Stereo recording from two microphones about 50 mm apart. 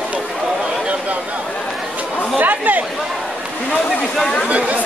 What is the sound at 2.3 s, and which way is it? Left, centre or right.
Speech, right.